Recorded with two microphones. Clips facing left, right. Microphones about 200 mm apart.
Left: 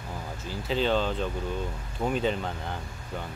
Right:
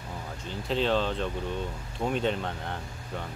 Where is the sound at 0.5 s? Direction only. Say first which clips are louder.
Left 1 dB; centre (ahead or behind).